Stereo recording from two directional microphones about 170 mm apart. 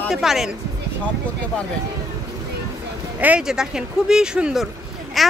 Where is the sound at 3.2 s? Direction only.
5° right (ahead or behind).